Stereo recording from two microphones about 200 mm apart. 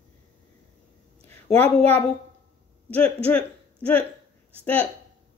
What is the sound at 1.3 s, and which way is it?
Speech, 10° left (ahead or behind).